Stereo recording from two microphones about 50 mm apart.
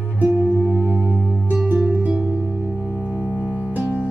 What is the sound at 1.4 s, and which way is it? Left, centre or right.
Music, right.